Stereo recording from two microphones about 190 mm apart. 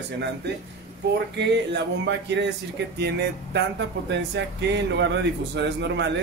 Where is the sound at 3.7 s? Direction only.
65° right (ahead or behind).